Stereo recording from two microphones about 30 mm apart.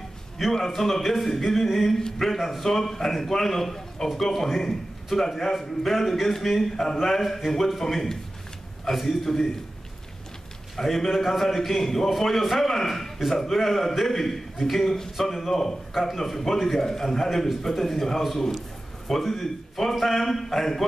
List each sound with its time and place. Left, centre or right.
0.5 s a man's voice: centre
2.0 s a man's voice: centre
2.2 s a man's voice: centre
4.6 s a man's voice: centre
10.8 s a man's voice: centre